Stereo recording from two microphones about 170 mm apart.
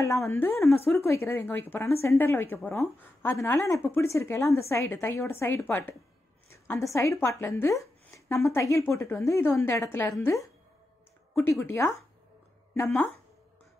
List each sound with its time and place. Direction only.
0.0 s a woman's voice: 15° left (ahead or behind)
11.6 s a woman's voice: 15° left (ahead or behind)
12.8 s speech: 5° left (ahead or behind)